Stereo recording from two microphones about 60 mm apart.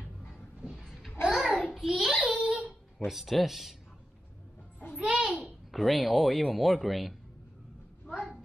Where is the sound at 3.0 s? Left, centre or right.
Centre.